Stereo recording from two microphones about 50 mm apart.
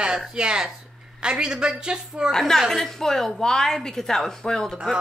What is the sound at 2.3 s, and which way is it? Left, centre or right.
Speech, centre.